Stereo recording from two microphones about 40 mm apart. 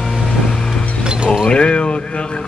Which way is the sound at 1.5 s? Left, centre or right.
Left.